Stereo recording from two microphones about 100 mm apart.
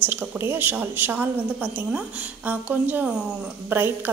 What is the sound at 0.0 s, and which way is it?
A woman's voice, 20° right (ahead or behind).